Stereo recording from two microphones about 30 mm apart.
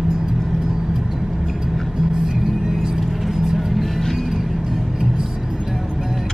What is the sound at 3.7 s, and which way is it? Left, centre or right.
Vehicle, centre.